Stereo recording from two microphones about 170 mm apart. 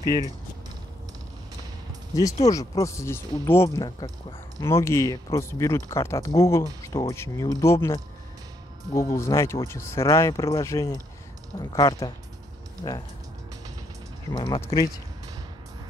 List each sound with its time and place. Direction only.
2.5 s speech: 20° left (ahead or behind)
14.3 s speech: 25° left (ahead or behind)